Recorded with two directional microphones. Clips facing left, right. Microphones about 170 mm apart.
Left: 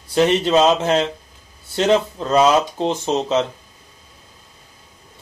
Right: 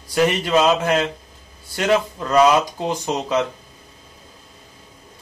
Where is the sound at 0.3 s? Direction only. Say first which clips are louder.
Left 2 dB; 25° left (ahead or behind).